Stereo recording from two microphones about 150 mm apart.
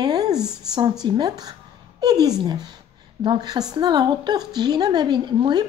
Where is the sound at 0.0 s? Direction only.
25° right (ahead or behind).